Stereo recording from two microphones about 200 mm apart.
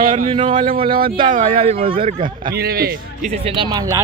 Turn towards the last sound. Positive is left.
turn(degrees=-20)  # may be behind; listen again after turning